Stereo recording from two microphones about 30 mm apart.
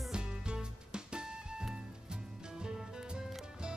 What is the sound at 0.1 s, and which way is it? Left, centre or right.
Music, right.